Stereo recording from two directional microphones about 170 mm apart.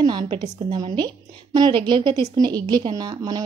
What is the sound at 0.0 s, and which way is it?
A woman's voice, 25° right (ahead or behind).